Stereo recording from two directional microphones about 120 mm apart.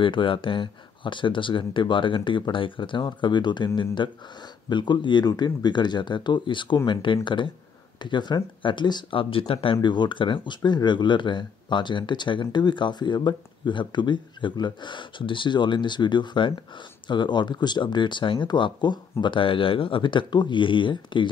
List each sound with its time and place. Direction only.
0.0 s speech: 45° left (ahead or behind)